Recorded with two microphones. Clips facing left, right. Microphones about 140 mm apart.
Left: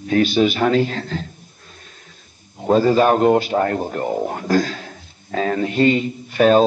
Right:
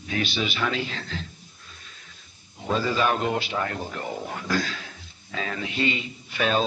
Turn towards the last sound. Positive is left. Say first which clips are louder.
# left 11 dB
turn(degrees=45)  # may be behind; listen again after turning